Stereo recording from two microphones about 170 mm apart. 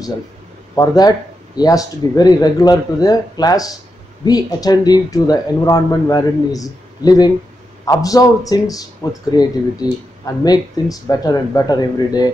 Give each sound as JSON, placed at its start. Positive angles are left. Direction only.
{"t": 0.7, "sound": "speech", "side_deg": 25}